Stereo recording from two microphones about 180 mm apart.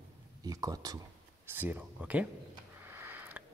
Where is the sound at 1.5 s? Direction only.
10° right (ahead or behind).